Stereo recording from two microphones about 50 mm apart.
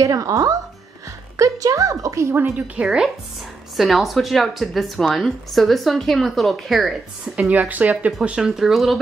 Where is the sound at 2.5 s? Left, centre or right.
Right.